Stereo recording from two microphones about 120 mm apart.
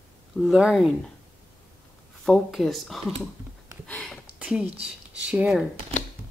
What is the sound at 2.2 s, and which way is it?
Speech, 5° left (ahead or behind).